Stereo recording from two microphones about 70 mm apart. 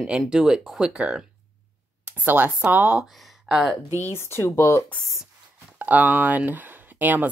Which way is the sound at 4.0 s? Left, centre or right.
Left.